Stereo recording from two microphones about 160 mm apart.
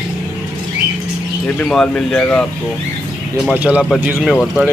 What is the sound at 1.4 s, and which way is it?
A man's voice, 5° left (ahead or behind).